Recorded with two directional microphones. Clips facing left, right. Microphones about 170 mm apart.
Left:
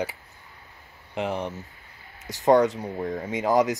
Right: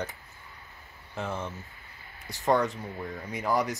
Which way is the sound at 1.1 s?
15° left (ahead or behind).